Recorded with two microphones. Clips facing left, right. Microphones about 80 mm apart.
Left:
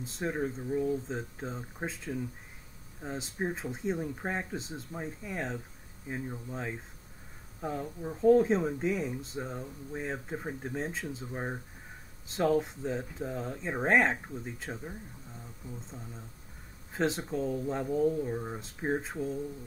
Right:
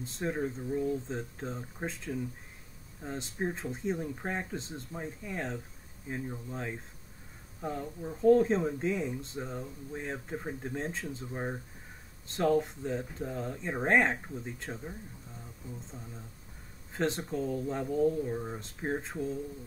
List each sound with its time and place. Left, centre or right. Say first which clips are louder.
0.1 s speech: even; centre
0.4 s speech: left 2 dB; centre
8.0 s speech: even; centre
9.9 s speech: left 1 dB; centre
17.2 s speech: left 1 dB; centre